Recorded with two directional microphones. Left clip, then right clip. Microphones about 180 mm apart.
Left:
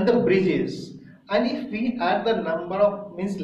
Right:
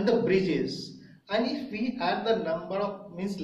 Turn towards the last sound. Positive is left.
turn(degrees=-10)  # may be behind; listen again after turning